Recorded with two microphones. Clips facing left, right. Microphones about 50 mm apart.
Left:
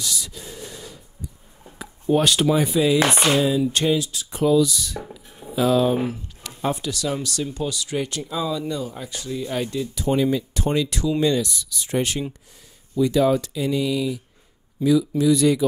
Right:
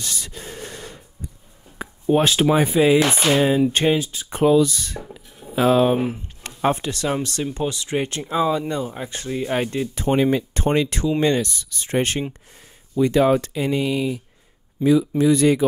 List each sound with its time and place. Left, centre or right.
0.0 s a sound: right
2.0 s speech: centre
2.4 s speech: right
4.3 s speech: right